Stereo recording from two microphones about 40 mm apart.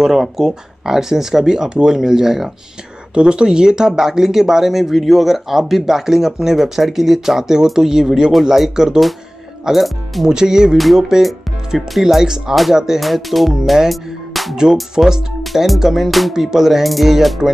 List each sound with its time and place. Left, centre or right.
0.0 s speech: centre
3.2 s speech: right
9.7 s speech: centre
10.2 s speech: centre
13.0 s speech: centre
13.8 s music: centre
15.0 s speech: right
15.4 s speech: centre
16.3 s speech: centre